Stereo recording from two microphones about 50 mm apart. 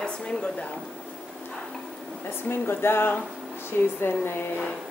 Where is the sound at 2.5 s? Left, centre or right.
Left.